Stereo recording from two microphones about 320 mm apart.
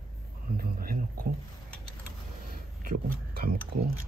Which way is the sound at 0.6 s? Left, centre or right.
Right.